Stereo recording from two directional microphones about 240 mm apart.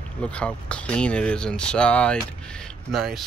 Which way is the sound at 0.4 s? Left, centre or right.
Centre.